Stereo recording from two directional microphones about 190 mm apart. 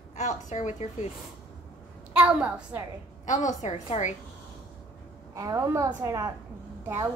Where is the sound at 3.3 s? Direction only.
40° left (ahead or behind).